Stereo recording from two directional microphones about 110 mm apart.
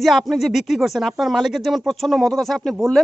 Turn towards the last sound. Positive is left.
turn(degrees=5)  # may be behind; listen again after turning